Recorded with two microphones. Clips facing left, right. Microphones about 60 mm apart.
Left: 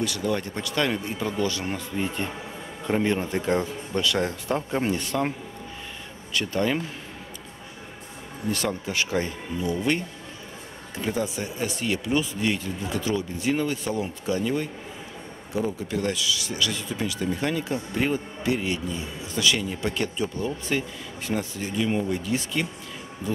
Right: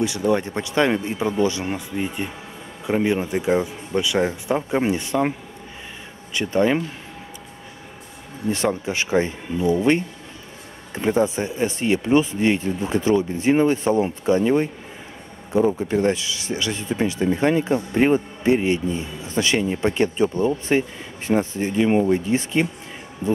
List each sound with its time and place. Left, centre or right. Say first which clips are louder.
0.0 s speech: right 6 dB; right
2.0 s speech: right 2 dB; centre
6.3 s speech: right 6 dB; right
8.5 s speech: right 5 dB; right